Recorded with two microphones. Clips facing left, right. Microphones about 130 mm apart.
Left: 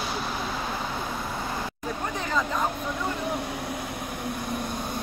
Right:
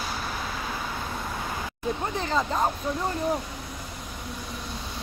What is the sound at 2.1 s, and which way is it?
Speech, 30° right (ahead or behind).